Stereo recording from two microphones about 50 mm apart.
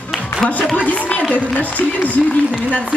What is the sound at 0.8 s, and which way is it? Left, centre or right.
Speech, left.